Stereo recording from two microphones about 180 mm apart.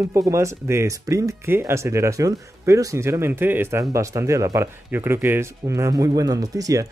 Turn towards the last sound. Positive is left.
turn(degrees=-20)  # may be behind; listen again after turning